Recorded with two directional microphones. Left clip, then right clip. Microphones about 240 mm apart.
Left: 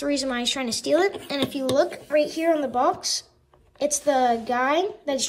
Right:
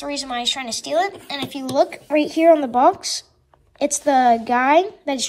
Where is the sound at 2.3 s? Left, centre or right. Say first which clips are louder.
Right 8 dB; centre.